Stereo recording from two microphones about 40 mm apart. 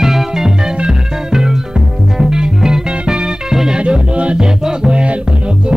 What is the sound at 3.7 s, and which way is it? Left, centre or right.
Music, right.